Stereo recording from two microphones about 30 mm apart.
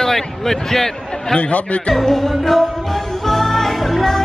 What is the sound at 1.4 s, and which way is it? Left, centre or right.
Speech, left.